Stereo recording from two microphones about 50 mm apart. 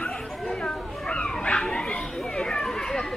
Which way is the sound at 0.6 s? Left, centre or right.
Centre.